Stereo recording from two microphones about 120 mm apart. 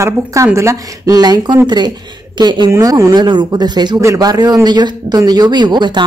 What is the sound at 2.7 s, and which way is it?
Speech, 30° right (ahead or behind).